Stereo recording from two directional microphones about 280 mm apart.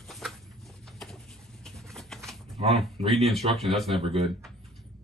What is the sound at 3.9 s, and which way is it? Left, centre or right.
Speech, centre.